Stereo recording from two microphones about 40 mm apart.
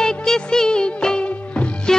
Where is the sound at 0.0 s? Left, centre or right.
Centre.